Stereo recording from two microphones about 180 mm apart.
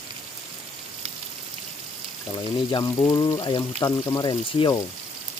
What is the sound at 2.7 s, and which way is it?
Speech, 20° left (ahead or behind).